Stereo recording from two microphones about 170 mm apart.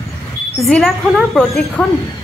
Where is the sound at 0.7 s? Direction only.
Centre (ahead or behind).